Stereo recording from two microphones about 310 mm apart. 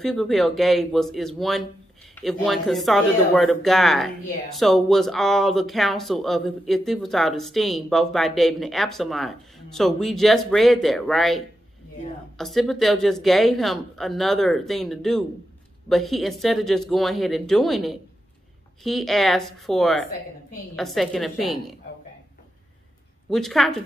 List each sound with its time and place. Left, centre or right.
0.0 s speech: centre
23.3 s speech: centre